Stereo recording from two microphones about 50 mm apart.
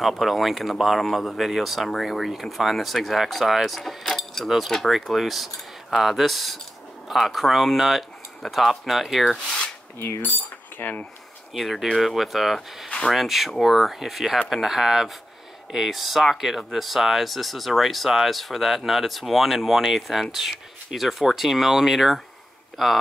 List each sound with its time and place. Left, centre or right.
0.0 s speech: centre
9.9 s mechanisms: left
10.3 s cutlery: left
11.5 s speech: centre